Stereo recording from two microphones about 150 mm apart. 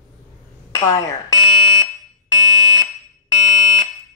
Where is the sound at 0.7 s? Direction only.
20° left (ahead or behind).